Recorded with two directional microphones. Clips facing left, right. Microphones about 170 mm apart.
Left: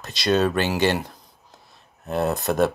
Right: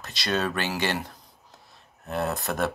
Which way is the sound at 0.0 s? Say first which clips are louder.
Left 7 dB; 20° left (ahead or behind).